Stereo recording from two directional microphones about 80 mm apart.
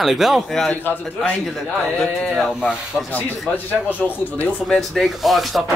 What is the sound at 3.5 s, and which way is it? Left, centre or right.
Speech, left.